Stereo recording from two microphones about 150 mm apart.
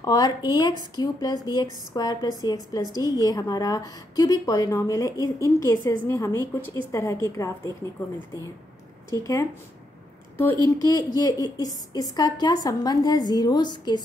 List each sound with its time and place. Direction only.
0.0 s a woman's voice: 25° left (ahead or behind)
9.2 s a woman's voice: 20° left (ahead or behind)